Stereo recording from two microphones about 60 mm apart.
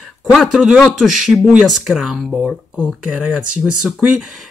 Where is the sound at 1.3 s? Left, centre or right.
Centre.